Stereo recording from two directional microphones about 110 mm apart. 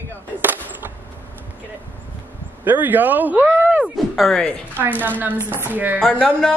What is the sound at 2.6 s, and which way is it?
A man's voice, 15° right (ahead or behind).